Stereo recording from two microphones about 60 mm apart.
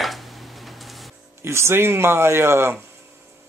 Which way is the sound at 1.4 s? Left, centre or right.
Right.